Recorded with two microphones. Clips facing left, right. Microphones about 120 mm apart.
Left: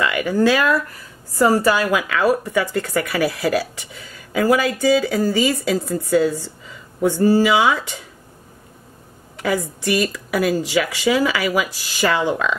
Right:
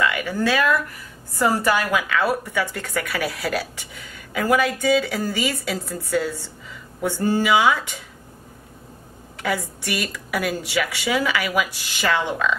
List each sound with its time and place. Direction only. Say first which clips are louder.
0.0 s speech: left 5 dB; 30° left (ahead or behind)
9.5 s speech: left 5 dB; 30° left (ahead or behind)